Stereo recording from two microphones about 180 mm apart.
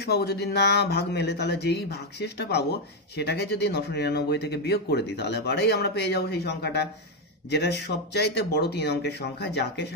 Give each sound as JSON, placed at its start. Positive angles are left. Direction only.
{"t": 0.0, "sound": "speech", "side_deg": 65}